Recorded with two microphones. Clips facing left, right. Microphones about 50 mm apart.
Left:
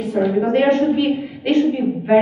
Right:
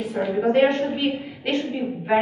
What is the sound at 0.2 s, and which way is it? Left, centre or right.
A woman's voice, centre.